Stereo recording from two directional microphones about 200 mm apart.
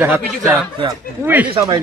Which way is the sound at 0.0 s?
10° right (ahead or behind).